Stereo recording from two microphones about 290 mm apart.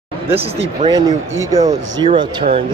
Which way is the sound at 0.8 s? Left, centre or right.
Centre.